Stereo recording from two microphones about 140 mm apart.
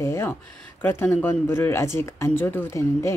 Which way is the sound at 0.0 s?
20° left (ahead or behind).